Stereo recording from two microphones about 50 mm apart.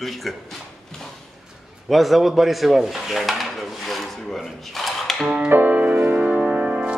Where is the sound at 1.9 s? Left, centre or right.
Centre.